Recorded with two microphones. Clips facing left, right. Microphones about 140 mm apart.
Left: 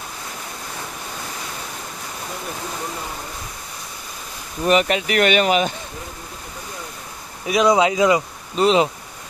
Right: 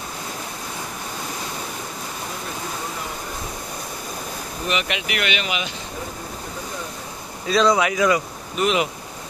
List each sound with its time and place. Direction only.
4.6 s speech: 40° left (ahead or behind)
7.4 s speech: 15° left (ahead or behind)